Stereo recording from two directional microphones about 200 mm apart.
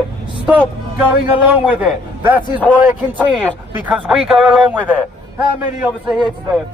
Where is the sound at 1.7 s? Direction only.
10° right (ahead or behind).